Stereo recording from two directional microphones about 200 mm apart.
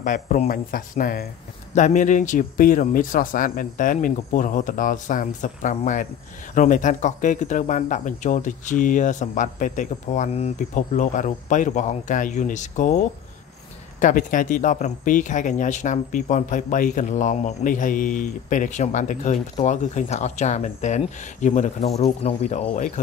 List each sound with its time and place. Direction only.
0.0 s speech: 40° left (ahead or behind)